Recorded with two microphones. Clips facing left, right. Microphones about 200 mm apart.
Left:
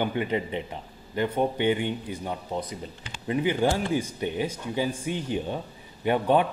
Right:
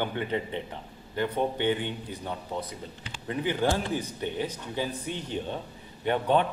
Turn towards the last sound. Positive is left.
turn(degrees=10)  # may be behind; listen again after turning